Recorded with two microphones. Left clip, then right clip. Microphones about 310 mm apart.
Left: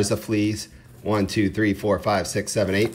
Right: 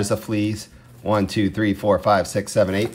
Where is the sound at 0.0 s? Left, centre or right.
Centre.